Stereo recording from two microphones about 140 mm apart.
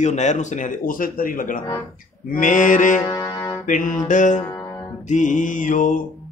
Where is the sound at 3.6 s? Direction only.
70° left (ahead or behind).